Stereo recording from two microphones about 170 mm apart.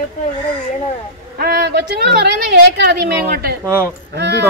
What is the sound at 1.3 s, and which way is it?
A woman's voice, 65° right (ahead or behind).